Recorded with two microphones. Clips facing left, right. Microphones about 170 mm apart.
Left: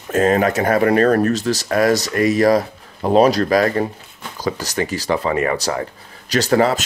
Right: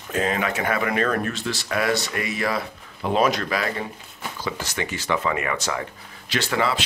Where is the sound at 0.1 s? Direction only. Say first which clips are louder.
Left 9 dB; 45° left (ahead or behind).